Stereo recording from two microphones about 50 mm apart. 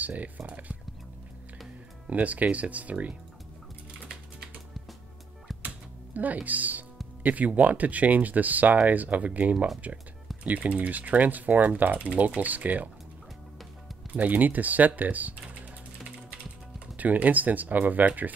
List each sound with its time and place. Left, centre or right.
0.0 s speech: right
2.0 s speech: right
5.5 s music: centre
6.1 s speech: right
14.1 s speech: right
16.9 s speech: right